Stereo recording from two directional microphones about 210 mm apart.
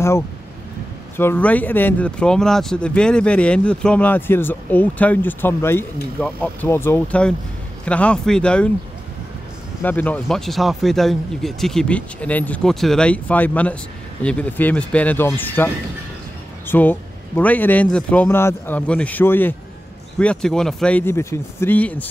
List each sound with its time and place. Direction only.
1.1 s speech: 10° left (ahead or behind)
9.8 s speech: 10° left (ahead or behind)